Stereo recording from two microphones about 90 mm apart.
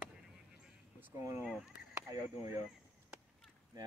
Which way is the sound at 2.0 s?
40° right (ahead or behind).